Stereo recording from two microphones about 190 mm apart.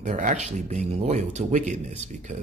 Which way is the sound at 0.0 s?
40° right (ahead or behind).